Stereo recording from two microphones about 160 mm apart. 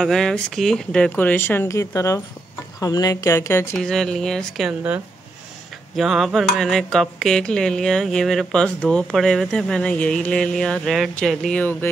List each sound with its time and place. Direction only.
0.0 s a woman's voice: centre (ahead or behind)
3.7 s music: 5° left (ahead or behind)